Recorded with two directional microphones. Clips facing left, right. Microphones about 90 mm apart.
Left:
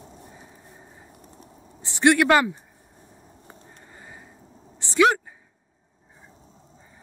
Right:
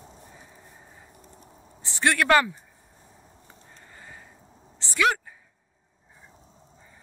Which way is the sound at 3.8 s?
20° left (ahead or behind).